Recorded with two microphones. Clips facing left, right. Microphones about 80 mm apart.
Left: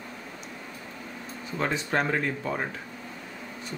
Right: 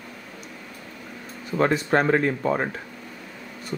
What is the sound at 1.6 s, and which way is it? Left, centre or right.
Speech, right.